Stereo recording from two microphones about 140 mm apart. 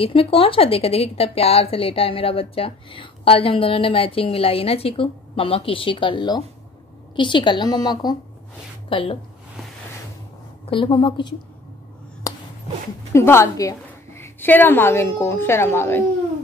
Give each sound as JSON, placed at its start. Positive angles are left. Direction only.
{"t": 0.0, "sound": "a woman's voice", "side_deg": 40}
{"t": 8.8, "sound": "a woman's voice", "side_deg": 40}
{"t": 10.7, "sound": "a woman's voice", "side_deg": 40}
{"t": 12.2, "sound": "a sound", "side_deg": 25}
{"t": 13.1, "sound": "a woman's voice", "side_deg": 20}